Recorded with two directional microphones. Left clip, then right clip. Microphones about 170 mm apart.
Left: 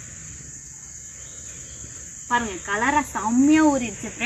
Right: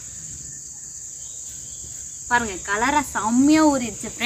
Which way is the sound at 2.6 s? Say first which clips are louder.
Right 1 dB; centre (ahead or behind).